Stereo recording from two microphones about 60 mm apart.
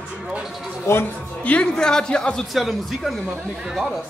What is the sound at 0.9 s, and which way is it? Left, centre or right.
Speech, left.